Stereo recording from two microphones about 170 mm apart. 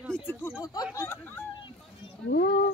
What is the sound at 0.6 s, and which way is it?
Speech, 20° left (ahead or behind).